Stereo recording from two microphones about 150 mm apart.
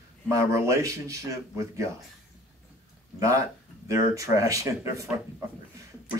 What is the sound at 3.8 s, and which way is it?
Speech, 20° right (ahead or behind).